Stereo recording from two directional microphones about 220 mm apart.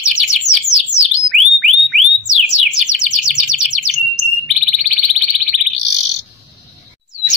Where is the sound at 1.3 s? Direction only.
Centre (ahead or behind).